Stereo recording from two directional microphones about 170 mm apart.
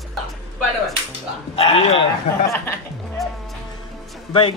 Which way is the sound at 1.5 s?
35° left (ahead or behind).